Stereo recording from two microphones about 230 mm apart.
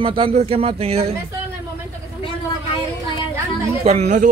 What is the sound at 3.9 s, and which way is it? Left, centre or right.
Speech, right.